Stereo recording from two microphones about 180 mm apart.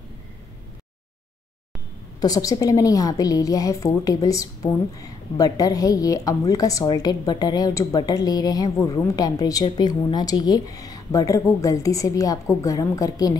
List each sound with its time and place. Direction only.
2.1 s a woman's voice: 20° left (ahead or behind)